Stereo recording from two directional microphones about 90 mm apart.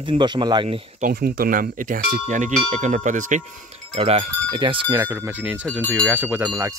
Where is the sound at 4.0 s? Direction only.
90° right.